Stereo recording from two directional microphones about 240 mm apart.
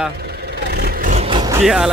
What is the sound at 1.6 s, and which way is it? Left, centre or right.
Speech, centre.